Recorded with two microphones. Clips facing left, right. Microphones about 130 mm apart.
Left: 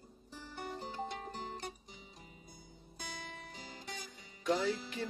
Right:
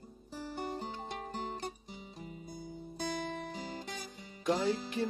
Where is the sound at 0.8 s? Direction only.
50° right (ahead or behind).